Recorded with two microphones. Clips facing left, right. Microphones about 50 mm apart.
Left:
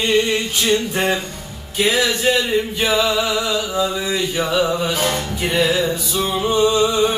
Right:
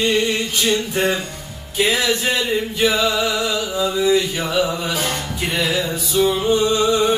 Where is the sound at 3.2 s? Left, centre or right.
Centre.